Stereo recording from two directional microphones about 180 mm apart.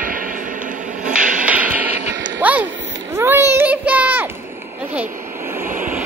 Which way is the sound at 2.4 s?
10° right (ahead or behind).